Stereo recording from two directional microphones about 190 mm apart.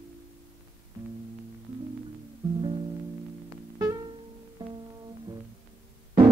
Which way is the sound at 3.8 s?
20° right (ahead or behind).